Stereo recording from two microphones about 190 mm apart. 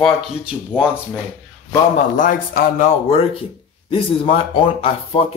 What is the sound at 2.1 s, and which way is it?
Speech, 50° left (ahead or behind).